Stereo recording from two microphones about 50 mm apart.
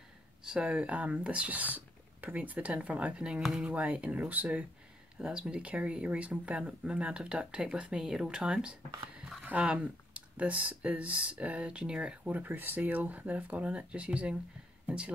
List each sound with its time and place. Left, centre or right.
0.5 s speech: right
5.1 s speech: centre
12.3 s speech: right